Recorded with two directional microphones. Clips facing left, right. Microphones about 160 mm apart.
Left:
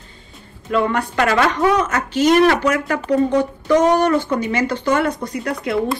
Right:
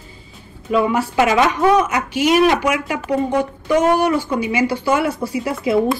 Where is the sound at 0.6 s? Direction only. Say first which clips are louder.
Right 2 dB; 5° right (ahead or behind).